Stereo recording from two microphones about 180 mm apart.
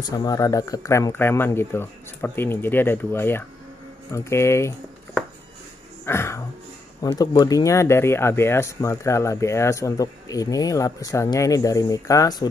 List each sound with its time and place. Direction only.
0.0 s speech: 20° left (ahead or behind)
6.0 s a sound: 15° left (ahead or behind)
7.0 s speech: 20° left (ahead or behind)